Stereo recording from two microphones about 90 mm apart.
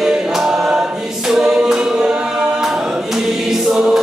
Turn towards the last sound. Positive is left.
turn(degrees=-5)  # may be behind; listen again after turning